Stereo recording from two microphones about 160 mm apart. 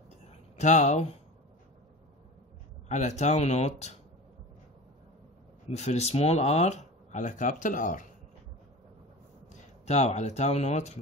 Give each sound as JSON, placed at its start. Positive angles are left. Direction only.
{"t": 0.3, "sound": "a sound", "side_deg": 50}
{"t": 2.9, "sound": "speech", "side_deg": 45}
{"t": 5.8, "sound": "speech", "side_deg": 45}
{"t": 9.5, "sound": "speech", "side_deg": 45}